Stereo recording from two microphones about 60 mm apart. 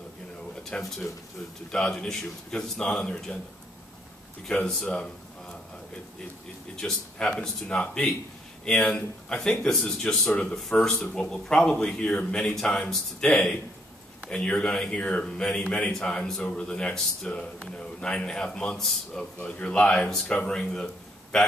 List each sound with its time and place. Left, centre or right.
0.7 s a man's voice: centre
4.8 s a sound: centre
6.8 s a man's voice: centre